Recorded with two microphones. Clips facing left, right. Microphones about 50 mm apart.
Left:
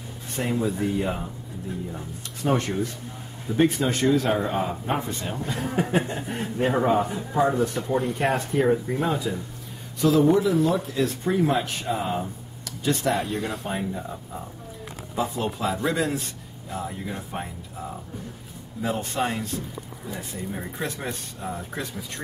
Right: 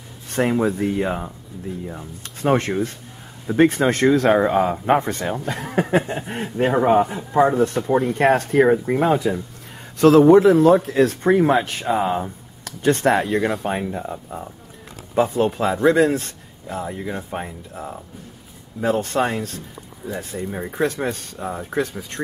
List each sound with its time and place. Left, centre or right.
0.3 s speech: right
0.7 s speech: right
2.4 s speech: right
11.0 s speech: right
13.2 s speech: right
13.9 s speech: right
16.7 s speech: right
18.8 s speech: right
21.0 s speech: right